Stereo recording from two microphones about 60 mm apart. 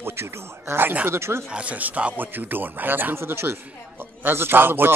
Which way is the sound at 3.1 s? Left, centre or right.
Right.